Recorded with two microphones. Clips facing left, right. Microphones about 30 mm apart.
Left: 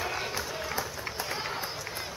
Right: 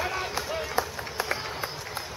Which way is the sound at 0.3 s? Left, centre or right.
Right.